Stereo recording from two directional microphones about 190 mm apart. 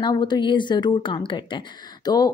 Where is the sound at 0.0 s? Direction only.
25° left (ahead or behind).